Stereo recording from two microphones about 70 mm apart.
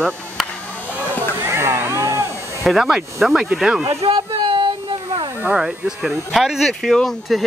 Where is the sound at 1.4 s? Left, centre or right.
Right.